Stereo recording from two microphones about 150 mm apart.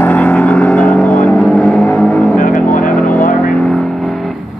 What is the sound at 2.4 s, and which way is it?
Vehicle, 60° left (ahead or behind).